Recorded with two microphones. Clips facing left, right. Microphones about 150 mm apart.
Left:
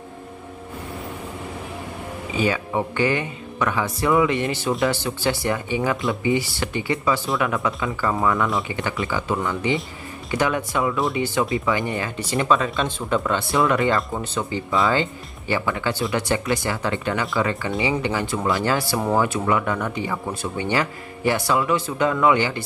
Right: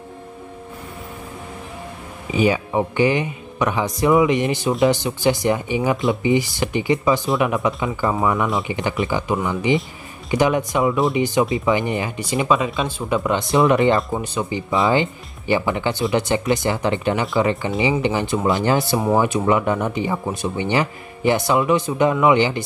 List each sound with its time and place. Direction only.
2.3 s speech: 15° right (ahead or behind)